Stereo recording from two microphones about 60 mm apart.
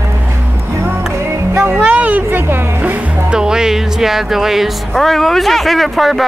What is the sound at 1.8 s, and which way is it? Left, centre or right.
Speech, right.